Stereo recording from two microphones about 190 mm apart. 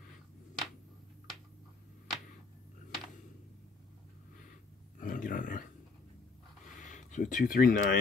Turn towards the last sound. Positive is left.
turn(degrees=50)  # may be behind; listen again after turning